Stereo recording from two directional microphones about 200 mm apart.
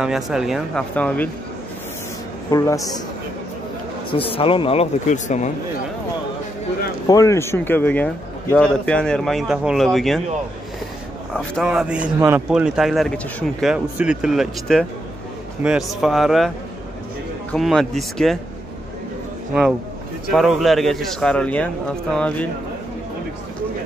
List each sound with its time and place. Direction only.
0.0 s speech: 5° right (ahead or behind)
2.5 s a man's voice: 15° left (ahead or behind)
4.1 s speech: 25° left (ahead or behind)
7.1 s speech: 15° left (ahead or behind)
11.3 s a man's voice: 5° right (ahead or behind)
20.2 s speech: centre (ahead or behind)